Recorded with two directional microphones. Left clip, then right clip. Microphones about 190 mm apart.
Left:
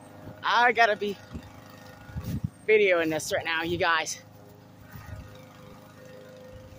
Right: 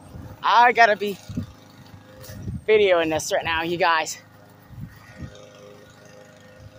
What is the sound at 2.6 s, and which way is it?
Speech, 20° right (ahead or behind).